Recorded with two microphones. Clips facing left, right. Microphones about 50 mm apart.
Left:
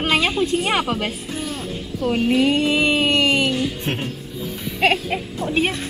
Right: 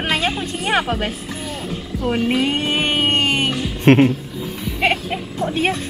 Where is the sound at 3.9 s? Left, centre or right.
Right.